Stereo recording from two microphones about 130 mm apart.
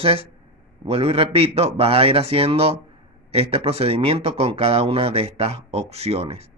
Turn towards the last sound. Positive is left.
turn(degrees=-50)  # may be behind; listen again after turning